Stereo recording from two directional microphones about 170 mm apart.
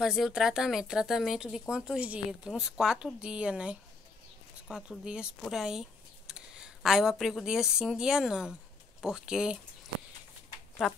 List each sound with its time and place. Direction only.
0.0 s speech: centre (ahead or behind)
10.8 s speech: centre (ahead or behind)